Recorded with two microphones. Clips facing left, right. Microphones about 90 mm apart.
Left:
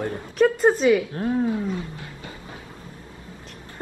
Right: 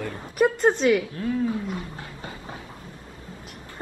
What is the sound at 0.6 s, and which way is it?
Speech, 5° left (ahead or behind).